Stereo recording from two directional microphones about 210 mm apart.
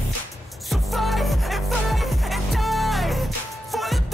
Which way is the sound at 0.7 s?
Centre (ahead or behind).